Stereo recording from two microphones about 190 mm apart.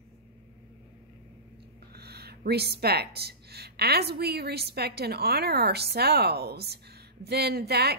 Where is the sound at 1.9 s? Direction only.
55° right (ahead or behind).